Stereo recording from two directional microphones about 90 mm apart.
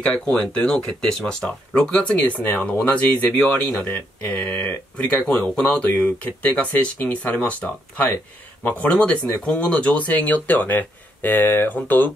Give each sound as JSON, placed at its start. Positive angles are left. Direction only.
{"t": 0.0, "sound": "speech", "side_deg": 10}